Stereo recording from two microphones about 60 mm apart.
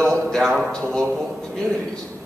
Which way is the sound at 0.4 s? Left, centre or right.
Centre.